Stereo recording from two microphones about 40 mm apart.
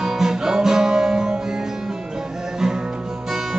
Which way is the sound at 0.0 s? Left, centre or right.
Centre.